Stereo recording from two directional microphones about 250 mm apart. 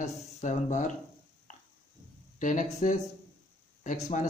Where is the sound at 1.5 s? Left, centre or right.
Left.